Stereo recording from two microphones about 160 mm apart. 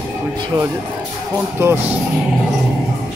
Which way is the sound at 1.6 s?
15° right (ahead or behind).